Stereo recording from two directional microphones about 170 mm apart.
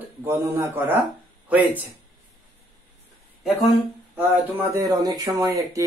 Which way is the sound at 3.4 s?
Centre (ahead or behind).